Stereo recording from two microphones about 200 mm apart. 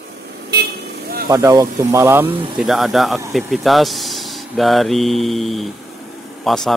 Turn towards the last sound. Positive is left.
turn(degrees=0)  # may be behind; listen again after turning